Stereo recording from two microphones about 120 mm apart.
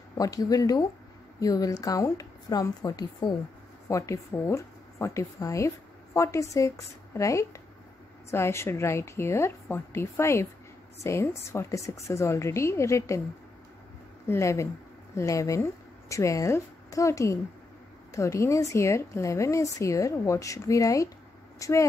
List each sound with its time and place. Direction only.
0.2 s a woman's voice: 30° left (ahead or behind)
14.2 s a woman's voice: 20° left (ahead or behind)